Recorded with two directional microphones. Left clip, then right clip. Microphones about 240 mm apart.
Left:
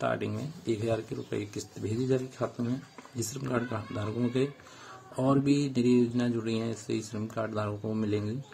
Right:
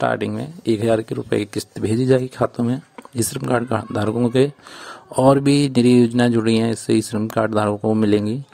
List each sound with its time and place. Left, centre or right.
0.0 s speech: right